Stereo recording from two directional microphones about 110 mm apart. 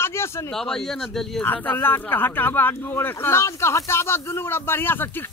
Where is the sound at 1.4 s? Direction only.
15° left (ahead or behind).